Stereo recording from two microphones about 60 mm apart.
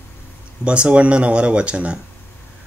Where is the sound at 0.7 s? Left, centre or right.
Centre.